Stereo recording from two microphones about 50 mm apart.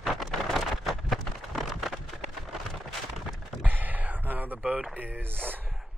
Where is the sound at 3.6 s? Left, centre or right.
Right.